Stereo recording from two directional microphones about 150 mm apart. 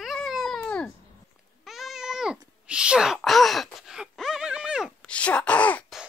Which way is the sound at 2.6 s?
5° right (ahead or behind).